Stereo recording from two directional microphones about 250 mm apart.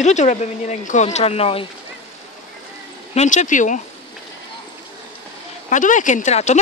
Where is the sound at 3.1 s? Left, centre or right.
Left.